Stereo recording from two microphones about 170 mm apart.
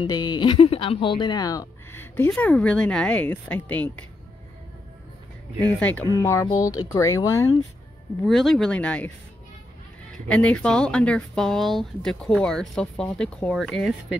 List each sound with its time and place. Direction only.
0.0 s speech: 25° left (ahead or behind); by 3.9 s 10° left (ahead or behind)
5.8 s speech: 10° left (ahead or behind)
6.4 s speech: 20° left (ahead or behind)
8.3 s speech: centre (ahead or behind)
10.2 s speech: 5° left (ahead or behind)